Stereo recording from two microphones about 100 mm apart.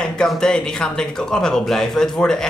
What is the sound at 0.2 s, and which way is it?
Speech, 5° left (ahead or behind).